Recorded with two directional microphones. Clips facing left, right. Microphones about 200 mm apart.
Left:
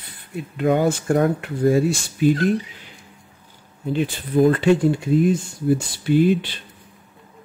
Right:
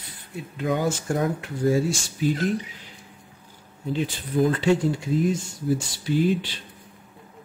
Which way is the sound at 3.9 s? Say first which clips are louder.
Left 5 dB; 60° left (ahead or behind).